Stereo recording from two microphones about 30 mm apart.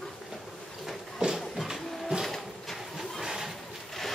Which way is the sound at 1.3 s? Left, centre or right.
Centre.